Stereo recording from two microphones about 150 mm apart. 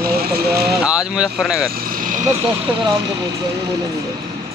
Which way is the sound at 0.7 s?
5° right (ahead or behind).